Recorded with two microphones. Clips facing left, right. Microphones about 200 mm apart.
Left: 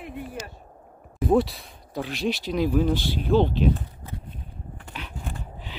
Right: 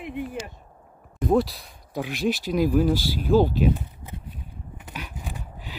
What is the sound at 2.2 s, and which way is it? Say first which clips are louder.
Speech: right 2 dB; 45° right (ahead or behind).